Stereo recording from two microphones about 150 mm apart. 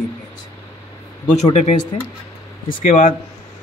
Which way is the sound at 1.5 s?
50° left (ahead or behind).